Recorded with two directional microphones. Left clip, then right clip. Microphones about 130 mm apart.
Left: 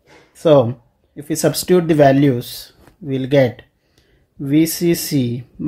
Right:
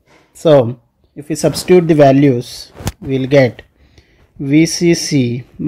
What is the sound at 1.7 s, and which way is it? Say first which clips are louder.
Speech: right 4 dB; 35° right (ahead or behind).